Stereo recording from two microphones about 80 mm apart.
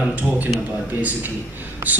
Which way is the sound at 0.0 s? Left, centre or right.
Centre.